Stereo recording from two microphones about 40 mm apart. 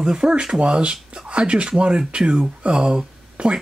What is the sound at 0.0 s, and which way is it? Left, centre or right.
Speech, centre.